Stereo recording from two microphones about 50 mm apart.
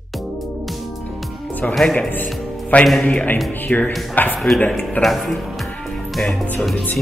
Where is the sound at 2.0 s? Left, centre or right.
Left.